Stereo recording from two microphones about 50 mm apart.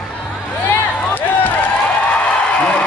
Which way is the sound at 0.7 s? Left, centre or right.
Left.